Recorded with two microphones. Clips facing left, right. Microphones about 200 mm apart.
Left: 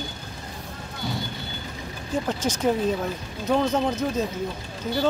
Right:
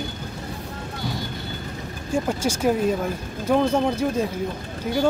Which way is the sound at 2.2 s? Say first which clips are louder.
Right 1 dB; 10° right (ahead or behind).